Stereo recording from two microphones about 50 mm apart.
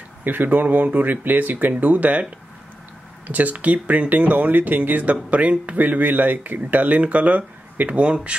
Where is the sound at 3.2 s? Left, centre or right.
Right.